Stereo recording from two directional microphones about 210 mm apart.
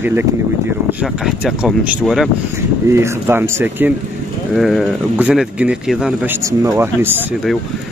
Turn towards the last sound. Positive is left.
turn(degrees=-10)  # may be behind; listen again after turning